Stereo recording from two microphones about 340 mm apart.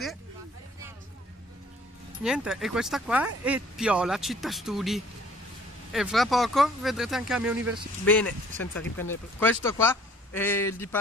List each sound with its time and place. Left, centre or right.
2.2 s a man's voice: centre